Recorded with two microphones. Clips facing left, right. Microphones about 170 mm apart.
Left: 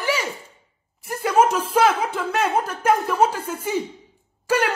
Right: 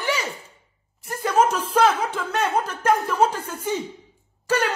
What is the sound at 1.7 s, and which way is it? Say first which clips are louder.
Speech: even; 10° left (ahead or behind).